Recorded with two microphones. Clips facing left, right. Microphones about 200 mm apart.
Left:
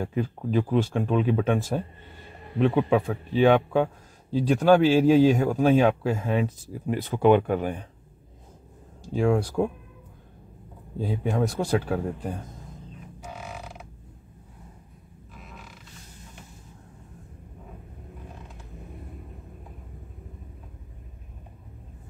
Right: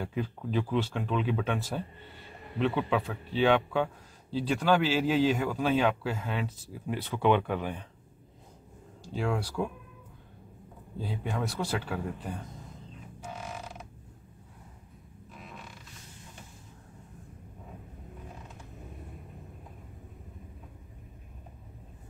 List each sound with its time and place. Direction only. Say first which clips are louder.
0.0 s a man's voice: left 5 dB; 45° left (ahead or behind)
9.1 s a man's voice: left 8 dB; 50° left (ahead or behind)
11.0 s a man's voice: left 8 dB; 45° left (ahead or behind)